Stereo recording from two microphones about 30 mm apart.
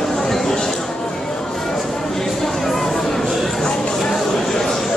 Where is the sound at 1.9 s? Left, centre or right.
Centre.